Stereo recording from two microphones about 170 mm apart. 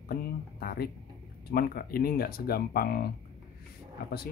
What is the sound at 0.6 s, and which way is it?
Speech, 60° left (ahead or behind).